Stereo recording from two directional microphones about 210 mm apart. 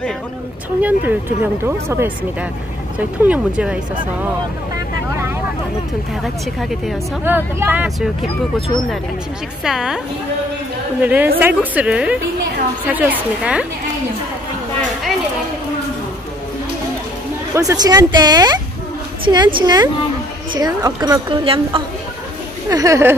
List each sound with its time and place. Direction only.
0.8 s speech: 10° right (ahead or behind)
6.2 s speech: centre (ahead or behind)
9.7 s speech: 5° right (ahead or behind)
11.0 s speech: 10° right (ahead or behind)
17.6 s a woman's voice: 15° right (ahead or behind)